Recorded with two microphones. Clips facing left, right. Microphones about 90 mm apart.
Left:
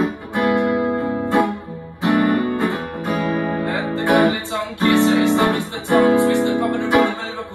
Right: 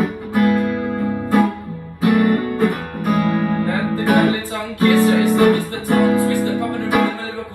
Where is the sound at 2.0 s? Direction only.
20° left (ahead or behind).